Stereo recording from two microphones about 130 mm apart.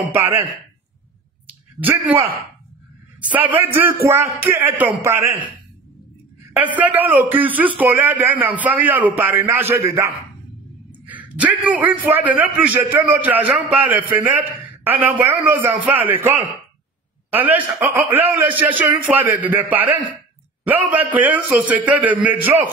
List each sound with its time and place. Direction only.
0.1 s a man's voice: 15° right (ahead or behind)
1.8 s a man's voice: 15° right (ahead or behind)
6.5 s a man's voice: 10° right (ahead or behind)
10.9 s a sound: 10° right (ahead or behind)
12.1 s a man's voice: 15° right (ahead or behind)